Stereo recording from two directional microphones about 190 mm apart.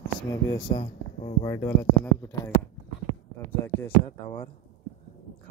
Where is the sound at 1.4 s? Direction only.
15° left (ahead or behind).